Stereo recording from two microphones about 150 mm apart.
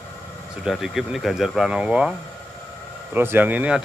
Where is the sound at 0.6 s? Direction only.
Centre (ahead or behind).